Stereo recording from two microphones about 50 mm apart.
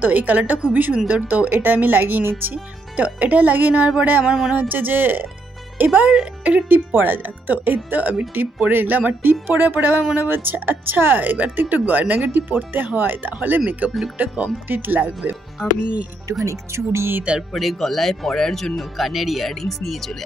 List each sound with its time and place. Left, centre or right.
0.0 s speech: right
4.3 s music: centre
4.6 s speech: right
15.8 s speech: right
16.4 s speech: right
17.5 s speech: centre